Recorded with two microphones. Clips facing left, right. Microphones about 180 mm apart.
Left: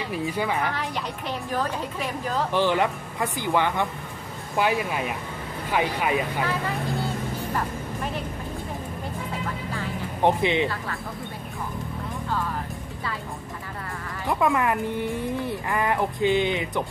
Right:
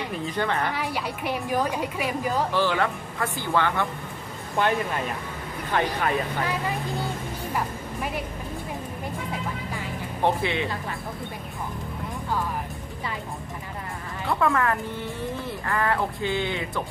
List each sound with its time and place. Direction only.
0.1 s speech: 10° left (ahead or behind)
0.7 s a woman's voice: 10° right (ahead or behind)
2.5 s speech: 20° left (ahead or behind)
10.2 s speech: 20° left (ahead or behind)
14.2 s speech: 15° left (ahead or behind)